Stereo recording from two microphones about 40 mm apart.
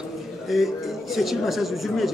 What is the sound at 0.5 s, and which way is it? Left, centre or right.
Speech, centre.